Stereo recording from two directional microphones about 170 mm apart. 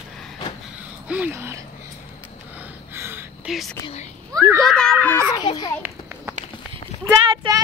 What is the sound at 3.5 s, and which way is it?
Speech, centre (ahead or behind).